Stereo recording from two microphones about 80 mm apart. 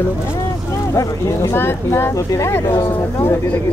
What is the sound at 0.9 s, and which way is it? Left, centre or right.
Speech, left.